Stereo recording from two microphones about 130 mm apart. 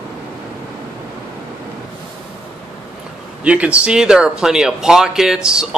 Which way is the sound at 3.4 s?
10° right (ahead or behind).